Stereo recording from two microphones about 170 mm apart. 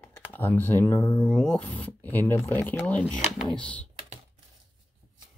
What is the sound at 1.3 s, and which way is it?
Speech, 5° left (ahead or behind).